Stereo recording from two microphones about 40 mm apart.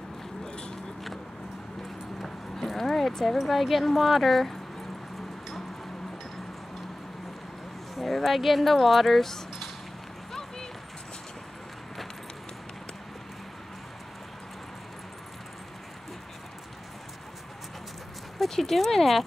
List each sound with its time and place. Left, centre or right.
0.5 s a sound: centre
2.2 s horse: centre
3.3 s speech: centre
7.9 s speech: centre
18.4 s speech: centre